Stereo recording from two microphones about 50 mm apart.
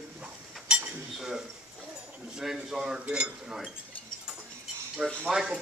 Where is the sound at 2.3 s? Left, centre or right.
Centre.